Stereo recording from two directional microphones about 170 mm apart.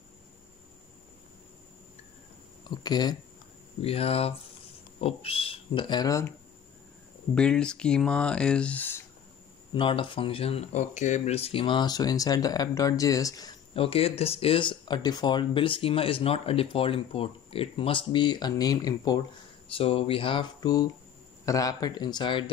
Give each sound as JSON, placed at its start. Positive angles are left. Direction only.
{"t": 2.7, "sound": "speech", "side_deg": 25}
{"t": 3.8, "sound": "speech", "side_deg": 35}
{"t": 7.3, "sound": "speech", "side_deg": 5}
{"t": 9.8, "sound": "speech", "side_deg": 30}
{"t": 13.7, "sound": "speech", "side_deg": 35}
{"t": 19.7, "sound": "speech", "side_deg": 35}